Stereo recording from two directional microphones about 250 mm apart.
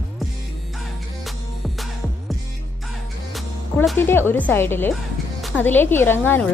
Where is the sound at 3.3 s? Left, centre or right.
Centre.